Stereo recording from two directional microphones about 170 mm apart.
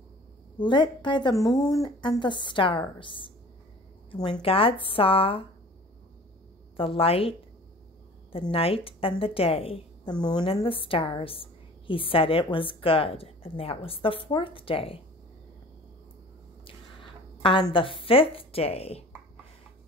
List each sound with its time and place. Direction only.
0.6 s a woman's voice: 25° left (ahead or behind)
6.8 s a woman's voice: 35° left (ahead or behind)
17.4 s a woman's voice: 30° left (ahead or behind)